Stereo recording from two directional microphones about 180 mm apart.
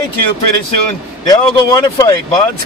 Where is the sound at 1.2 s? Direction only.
20° left (ahead or behind).